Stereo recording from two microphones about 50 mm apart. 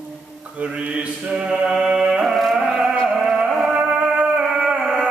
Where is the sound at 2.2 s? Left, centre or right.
Centre.